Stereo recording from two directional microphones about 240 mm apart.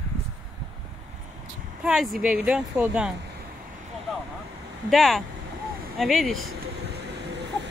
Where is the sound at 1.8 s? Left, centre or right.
Centre.